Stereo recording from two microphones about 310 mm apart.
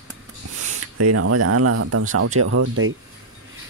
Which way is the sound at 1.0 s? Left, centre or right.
Right.